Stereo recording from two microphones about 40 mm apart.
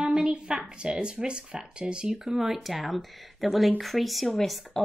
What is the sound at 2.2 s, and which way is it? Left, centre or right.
Speech, centre.